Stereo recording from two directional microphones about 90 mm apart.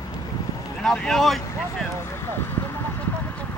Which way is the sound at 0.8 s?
5° left (ahead or behind).